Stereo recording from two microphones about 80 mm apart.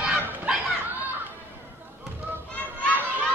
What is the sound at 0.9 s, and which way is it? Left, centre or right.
Children playing, right.